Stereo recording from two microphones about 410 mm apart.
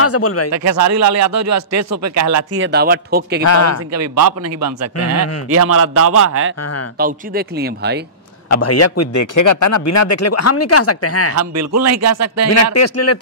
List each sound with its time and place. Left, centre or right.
0.0 s speech: left
0.5 s speech: right
2.6 s speech: right
3.4 s speech: left
3.9 s speech: right
6.6 s a man's voice: left
7.0 s speech: right
8.5 s a man's voice: left
11.3 s speech: right
12.7 s a man's voice: left